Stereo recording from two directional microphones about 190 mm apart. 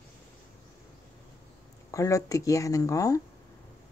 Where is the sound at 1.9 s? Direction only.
15° left (ahead or behind).